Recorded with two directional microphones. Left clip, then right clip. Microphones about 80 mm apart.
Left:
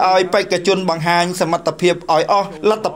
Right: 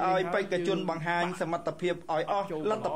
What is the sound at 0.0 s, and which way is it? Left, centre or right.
A man's voice, left.